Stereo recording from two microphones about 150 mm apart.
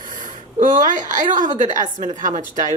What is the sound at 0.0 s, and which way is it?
A woman's voice, 60° right (ahead or behind).